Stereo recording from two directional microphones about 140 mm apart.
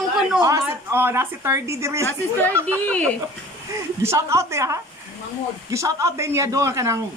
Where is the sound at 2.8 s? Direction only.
10° left (ahead or behind).